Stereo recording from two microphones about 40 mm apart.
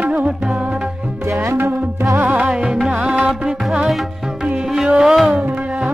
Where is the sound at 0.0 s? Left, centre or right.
Right.